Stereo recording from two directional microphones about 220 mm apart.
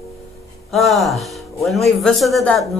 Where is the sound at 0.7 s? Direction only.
Centre (ahead or behind).